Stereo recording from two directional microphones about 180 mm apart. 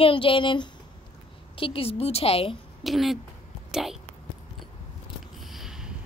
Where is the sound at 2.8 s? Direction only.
Centre (ahead or behind).